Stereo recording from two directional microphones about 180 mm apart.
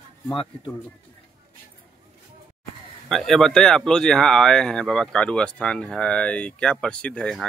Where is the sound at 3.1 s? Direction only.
Centre (ahead or behind).